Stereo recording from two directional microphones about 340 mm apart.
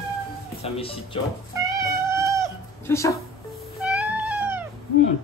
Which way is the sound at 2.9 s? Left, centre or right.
Centre.